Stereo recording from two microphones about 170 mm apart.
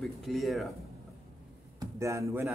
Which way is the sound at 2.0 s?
15° right (ahead or behind).